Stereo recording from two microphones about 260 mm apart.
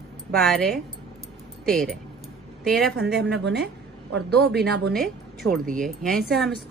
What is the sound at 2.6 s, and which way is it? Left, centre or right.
Speech, centre.